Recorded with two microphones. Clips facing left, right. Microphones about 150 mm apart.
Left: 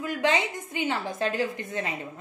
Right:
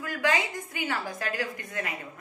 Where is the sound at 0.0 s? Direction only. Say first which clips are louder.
Left 2 dB; 25° left (ahead or behind).